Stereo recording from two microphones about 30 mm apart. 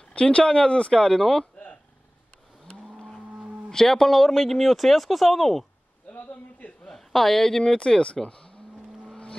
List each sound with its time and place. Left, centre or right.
0.1 s speech: left
0.9 s speech: left
1.4 s a sound: left
3.7 s speech: centre
6.9 s speech: centre
7.7 s speech: left